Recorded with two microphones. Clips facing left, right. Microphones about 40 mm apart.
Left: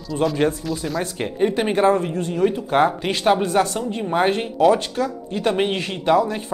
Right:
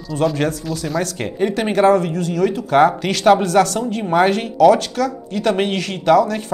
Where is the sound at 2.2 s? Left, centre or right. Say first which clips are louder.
Right 2 dB; right.